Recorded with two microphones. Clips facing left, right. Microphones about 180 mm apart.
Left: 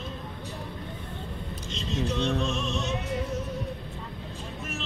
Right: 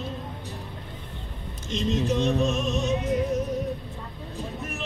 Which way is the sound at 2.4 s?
50° right (ahead or behind).